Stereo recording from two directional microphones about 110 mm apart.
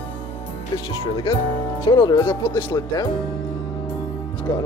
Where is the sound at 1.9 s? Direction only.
40° left (ahead or behind).